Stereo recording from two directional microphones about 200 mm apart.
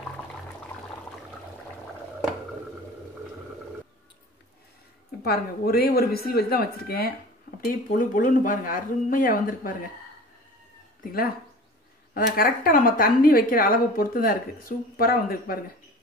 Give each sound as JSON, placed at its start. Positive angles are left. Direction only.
{"t": 5.2, "sound": "a woman's voice", "side_deg": 50}
{"t": 12.1, "sound": "a woman's voice", "side_deg": 45}